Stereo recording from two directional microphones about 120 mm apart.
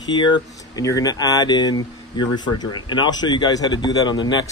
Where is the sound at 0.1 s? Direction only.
40° left (ahead or behind).